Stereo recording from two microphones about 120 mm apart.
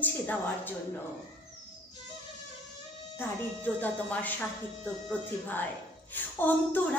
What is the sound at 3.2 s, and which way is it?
Speech, 15° left (ahead or behind).